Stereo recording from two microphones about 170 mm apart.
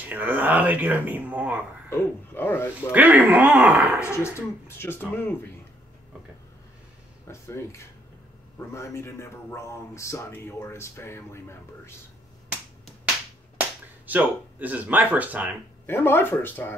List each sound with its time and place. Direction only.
0.0 s speech: 10° right (ahead or behind)
1.9 s a man's voice: 15° left (ahead or behind)
2.9 s speech: 10° right (ahead or behind)
4.1 s a man's voice: 15° left (ahead or behind)
7.2 s a man's voice: 15° left (ahead or behind)
13.6 s speech: 10° right (ahead or behind)
15.9 s a man's voice: 10° left (ahead or behind)